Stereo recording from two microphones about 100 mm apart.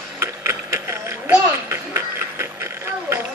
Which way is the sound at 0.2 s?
25° right (ahead or behind).